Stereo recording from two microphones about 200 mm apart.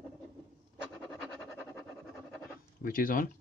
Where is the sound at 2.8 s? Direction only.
45° left (ahead or behind).